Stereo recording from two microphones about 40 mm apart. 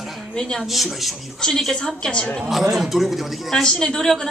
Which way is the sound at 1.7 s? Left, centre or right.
Centre.